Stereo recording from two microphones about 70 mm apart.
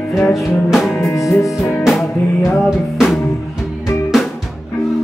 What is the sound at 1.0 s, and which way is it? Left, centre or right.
Music, left.